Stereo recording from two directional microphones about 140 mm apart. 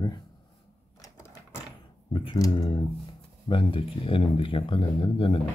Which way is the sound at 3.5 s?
40° left (ahead or behind).